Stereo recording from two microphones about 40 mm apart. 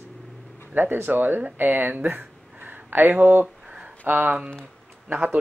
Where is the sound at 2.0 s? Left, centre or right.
Right.